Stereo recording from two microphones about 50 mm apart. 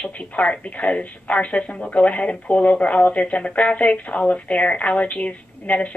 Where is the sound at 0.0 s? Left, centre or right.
Left.